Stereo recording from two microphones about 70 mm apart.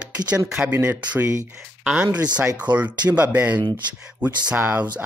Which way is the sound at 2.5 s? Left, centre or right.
Right.